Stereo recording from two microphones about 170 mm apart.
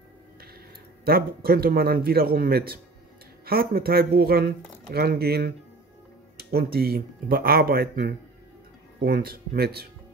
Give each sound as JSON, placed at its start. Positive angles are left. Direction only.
{"t": 1.0, "sound": "speech", "side_deg": -65}